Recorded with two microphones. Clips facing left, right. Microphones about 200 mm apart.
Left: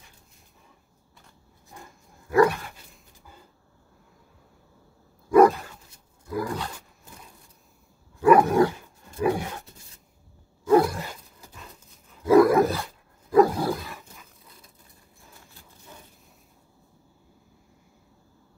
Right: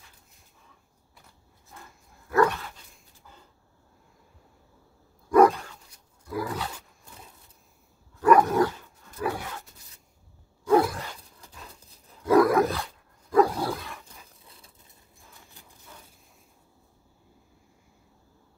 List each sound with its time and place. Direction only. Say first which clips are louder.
1.8 s dog: left 3 dB; 15° left (ahead or behind)
5.3 s dog: left 2 dB; centre (ahead or behind)
6.2 s roar: left 2 dB; 5° right (ahead or behind)
8.2 s dog: left 2 dB; 10° left (ahead or behind)
10.6 s a sound: left 2 dB; centre (ahead or behind)
11.8 s wild animals: even; 35° right (ahead or behind)
12.3 s roar: left 3 dB; centre (ahead or behind)
14.4 s vehicle: left 1 dB; 30° right (ahead or behind)